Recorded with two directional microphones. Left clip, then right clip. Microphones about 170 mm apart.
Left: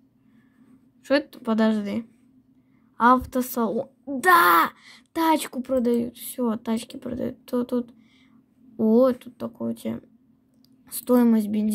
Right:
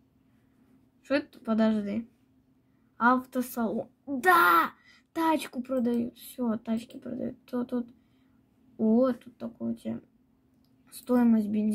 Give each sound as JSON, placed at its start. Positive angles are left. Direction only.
{"t": 1.0, "sound": "speech", "side_deg": 30}